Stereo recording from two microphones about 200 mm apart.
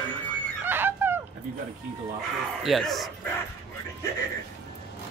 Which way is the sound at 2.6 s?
Centre (ahead or behind).